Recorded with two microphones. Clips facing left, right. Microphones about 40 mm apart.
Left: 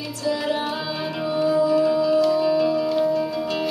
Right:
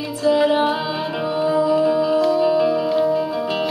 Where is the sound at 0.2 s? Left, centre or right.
Right.